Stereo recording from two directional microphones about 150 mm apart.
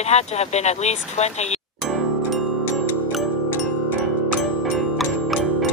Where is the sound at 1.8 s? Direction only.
Centre (ahead or behind).